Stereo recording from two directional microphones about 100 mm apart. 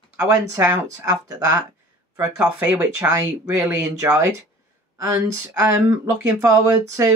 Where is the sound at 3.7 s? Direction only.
30° right (ahead or behind).